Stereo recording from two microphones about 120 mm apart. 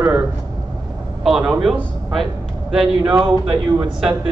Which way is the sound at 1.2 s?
5° right (ahead or behind).